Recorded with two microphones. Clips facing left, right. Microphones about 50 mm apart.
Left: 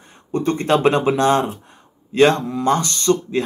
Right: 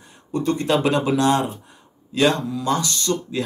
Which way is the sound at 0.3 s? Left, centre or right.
Left.